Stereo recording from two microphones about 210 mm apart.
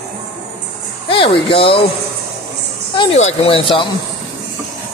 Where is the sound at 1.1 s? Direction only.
25° left (ahead or behind).